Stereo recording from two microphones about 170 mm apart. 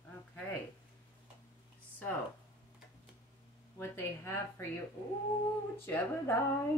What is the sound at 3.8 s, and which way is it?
Speech, 15° left (ahead or behind).